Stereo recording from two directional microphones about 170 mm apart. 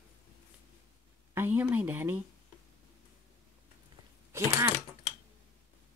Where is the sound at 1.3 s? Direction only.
10° right (ahead or behind).